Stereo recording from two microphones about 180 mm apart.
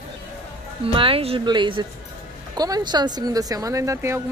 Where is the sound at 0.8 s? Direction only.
30° right (ahead or behind).